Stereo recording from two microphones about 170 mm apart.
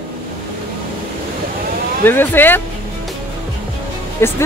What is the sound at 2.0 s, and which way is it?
Speech, 10° left (ahead or behind).